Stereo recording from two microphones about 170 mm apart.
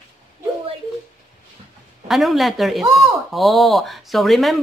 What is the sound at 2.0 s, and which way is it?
Speech, centre (ahead or behind).